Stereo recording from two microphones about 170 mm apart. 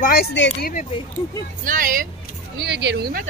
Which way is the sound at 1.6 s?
55° right (ahead or behind).